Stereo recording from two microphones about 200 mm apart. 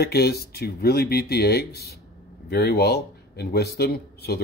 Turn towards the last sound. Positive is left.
turn(degrees=55)  # may be behind; listen again after turning